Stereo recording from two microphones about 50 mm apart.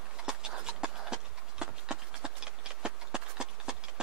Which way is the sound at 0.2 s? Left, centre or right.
Centre.